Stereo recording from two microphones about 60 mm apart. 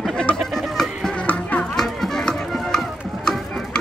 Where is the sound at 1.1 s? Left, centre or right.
Left.